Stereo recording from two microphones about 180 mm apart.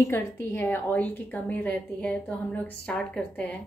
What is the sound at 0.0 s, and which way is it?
A woman's voice, 15° left (ahead or behind).